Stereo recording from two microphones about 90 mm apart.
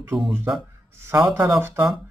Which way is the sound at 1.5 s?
25° right (ahead or behind).